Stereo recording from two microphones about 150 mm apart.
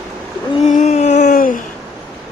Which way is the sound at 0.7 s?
50° left (ahead or behind).